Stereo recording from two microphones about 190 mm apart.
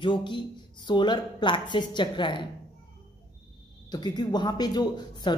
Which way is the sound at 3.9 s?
20° left (ahead or behind).